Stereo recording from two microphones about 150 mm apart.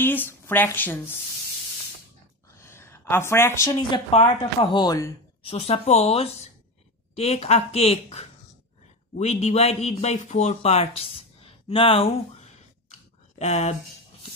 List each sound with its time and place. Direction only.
0.0 s speech: 15° left (ahead or behind)
2.6 s a sound: 15° left (ahead or behind)
3.9 s a woman's voice: 40° left (ahead or behind)
4.7 s speech: 25° left (ahead or behind)
5.4 s speech: 40° left (ahead or behind)
11.0 s a sound: 40° left (ahead or behind)
13.4 s speech: 50° left (ahead or behind)